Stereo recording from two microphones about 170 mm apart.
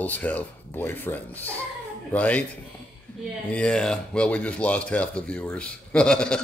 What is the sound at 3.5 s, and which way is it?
Speech, 5° left (ahead or behind).